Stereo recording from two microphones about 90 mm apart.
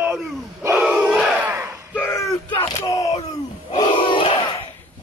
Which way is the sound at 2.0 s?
30° left (ahead or behind).